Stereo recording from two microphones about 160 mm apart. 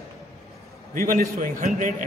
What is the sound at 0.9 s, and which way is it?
Speech, 60° right (ahead or behind).